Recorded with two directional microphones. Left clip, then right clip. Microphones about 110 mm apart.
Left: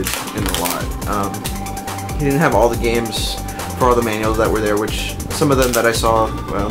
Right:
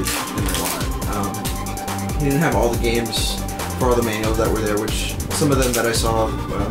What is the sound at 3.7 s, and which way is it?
Music, 30° left (ahead or behind).